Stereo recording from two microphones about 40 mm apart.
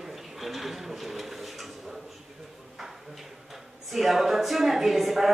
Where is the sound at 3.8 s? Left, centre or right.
Centre.